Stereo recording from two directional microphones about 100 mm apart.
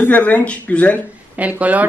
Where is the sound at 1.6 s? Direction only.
15° right (ahead or behind).